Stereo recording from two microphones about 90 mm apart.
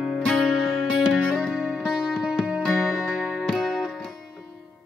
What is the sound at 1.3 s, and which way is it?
Music, 5° left (ahead or behind).